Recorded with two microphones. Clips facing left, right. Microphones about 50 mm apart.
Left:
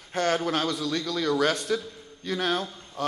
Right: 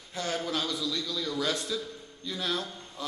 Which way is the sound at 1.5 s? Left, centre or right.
Left.